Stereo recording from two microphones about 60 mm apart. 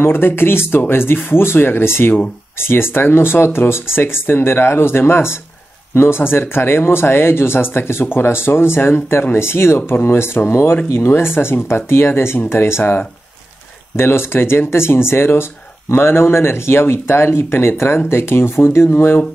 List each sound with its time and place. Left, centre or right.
0.0 s speech: left